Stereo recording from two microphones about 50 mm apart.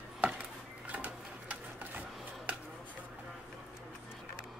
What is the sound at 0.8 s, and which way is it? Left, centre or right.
Sewing machine, right.